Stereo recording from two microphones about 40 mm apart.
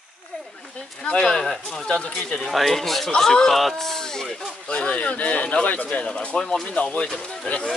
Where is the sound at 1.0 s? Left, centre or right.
Left.